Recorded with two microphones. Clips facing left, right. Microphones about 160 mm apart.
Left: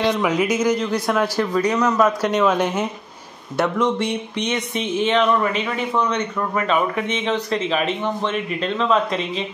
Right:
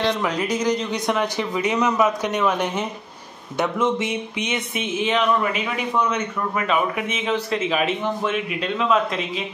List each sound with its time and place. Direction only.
0.0 s a man's voice: 10° left (ahead or behind)
1.0 s a man's voice: 15° right (ahead or behind)
2.0 s a man's voice: 5° right (ahead or behind)